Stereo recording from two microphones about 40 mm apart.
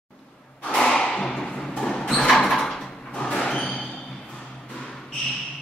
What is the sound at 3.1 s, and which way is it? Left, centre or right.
Music, left.